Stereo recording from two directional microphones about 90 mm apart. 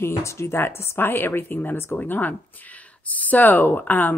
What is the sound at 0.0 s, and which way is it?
Speech, 30° left (ahead or behind).